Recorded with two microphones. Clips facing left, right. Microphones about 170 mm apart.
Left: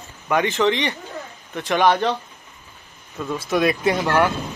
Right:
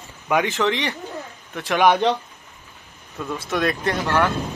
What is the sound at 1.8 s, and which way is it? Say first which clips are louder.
Speech: right 1 dB; 15° right (ahead or behind).